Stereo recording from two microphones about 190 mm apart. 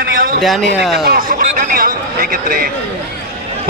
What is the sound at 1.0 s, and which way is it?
Speech, 50° right (ahead or behind).